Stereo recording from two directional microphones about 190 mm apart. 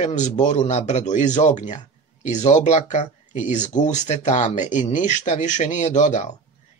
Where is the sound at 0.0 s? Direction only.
40° left (ahead or behind).